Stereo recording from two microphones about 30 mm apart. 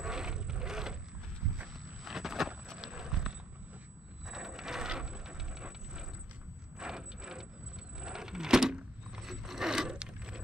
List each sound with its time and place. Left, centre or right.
0.0 s vehicle: right
2.0 s a sound: centre
2.8 s clip-clop: right
4.3 s a sound: centre
4.8 s mechanisms: right
6.8 s ratchet: right
8.0 s coin: right
9.7 s coin: right
9.9 s a sound: right